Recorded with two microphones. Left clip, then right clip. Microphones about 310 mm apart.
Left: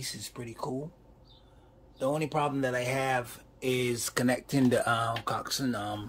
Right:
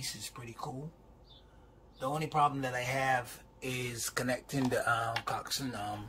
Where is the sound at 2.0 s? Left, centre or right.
Left.